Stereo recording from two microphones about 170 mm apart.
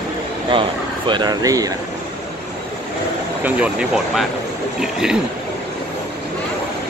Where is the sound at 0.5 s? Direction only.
30° right (ahead or behind).